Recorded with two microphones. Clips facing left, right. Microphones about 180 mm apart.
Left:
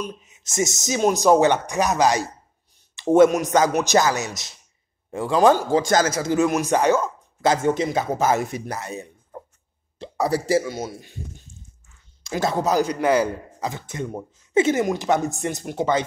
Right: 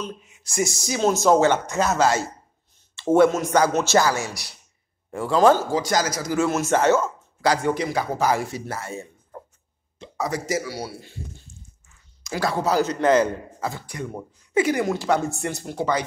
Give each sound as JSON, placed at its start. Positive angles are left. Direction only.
{"t": 0.0, "sound": "a man's voice", "side_deg": 20}
{"t": 9.9, "sound": "speech", "side_deg": 35}
{"t": 10.6, "sound": "a man's voice", "side_deg": 20}